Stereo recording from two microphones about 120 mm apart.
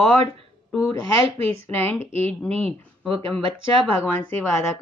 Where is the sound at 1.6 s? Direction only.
15° left (ahead or behind).